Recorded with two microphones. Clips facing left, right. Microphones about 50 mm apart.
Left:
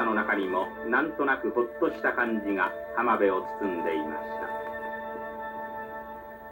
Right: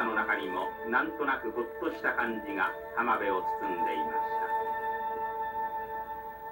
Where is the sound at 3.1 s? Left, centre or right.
Centre.